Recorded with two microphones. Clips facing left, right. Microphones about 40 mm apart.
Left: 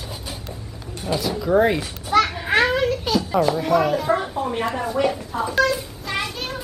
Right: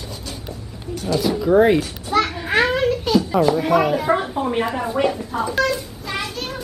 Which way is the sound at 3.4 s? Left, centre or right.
Centre.